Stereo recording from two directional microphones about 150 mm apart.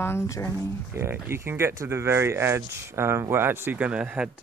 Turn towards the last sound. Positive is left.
turn(degrees=-10)  # may be behind; listen again after turning